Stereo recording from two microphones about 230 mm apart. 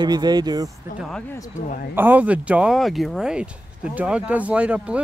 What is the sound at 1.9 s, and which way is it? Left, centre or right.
Speech, centre.